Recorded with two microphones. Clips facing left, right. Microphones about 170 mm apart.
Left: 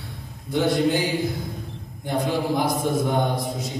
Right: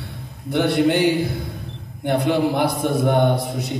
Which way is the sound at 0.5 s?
65° right (ahead or behind).